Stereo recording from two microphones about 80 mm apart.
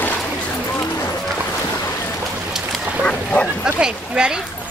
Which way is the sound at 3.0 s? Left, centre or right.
Centre.